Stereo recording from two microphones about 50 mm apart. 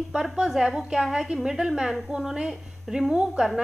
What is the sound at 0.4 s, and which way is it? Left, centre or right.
A woman's voice, centre.